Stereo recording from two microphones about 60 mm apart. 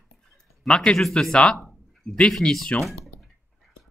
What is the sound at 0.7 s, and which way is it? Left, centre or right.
Speech, centre.